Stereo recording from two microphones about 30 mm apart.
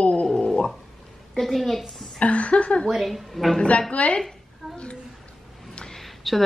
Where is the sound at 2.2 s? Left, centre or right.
Left.